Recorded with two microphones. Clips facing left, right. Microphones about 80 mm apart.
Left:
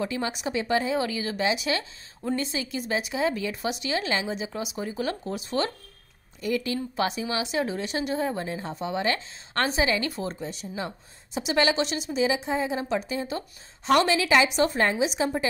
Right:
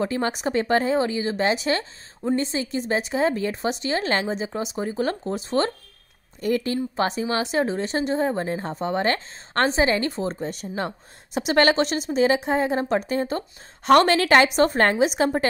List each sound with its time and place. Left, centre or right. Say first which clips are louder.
0.0 s speech: right 5 dB; right
10.4 s a woman's voice: right 5 dB; right